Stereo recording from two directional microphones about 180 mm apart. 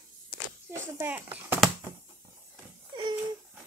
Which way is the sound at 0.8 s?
10° right (ahead or behind).